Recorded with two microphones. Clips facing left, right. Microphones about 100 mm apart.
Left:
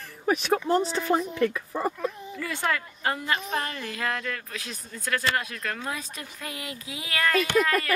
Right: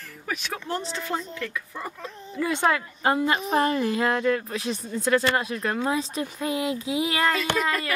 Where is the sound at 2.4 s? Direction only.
20° right (ahead or behind).